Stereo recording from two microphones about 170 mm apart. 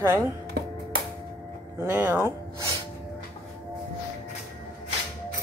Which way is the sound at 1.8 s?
10° right (ahead or behind).